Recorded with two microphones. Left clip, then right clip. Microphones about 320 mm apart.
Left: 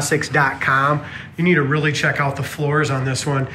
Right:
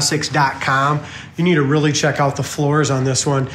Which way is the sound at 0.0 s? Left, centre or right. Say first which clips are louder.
Right 1 dB; centre.